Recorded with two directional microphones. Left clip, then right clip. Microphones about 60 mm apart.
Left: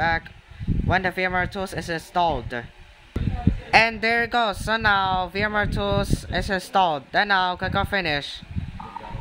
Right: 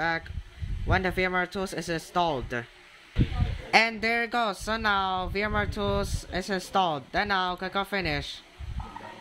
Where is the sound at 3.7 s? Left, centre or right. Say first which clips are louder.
Left 5 dB; left.